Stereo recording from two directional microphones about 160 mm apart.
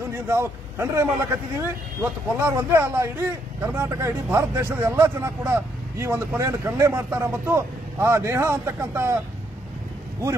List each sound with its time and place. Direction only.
0.1 s a man's voice: 15° right (ahead or behind)